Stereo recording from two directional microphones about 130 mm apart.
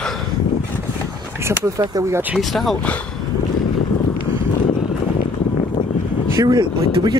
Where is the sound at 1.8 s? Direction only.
25° right (ahead or behind).